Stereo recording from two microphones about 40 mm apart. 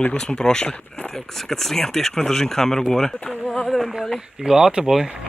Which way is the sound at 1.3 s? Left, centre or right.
Centre.